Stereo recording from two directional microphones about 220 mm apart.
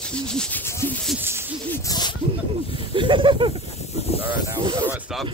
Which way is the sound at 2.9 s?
20° right (ahead or behind).